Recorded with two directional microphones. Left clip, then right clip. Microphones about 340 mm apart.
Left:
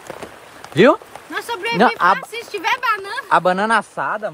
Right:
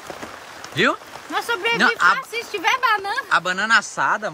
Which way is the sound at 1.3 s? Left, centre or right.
Centre.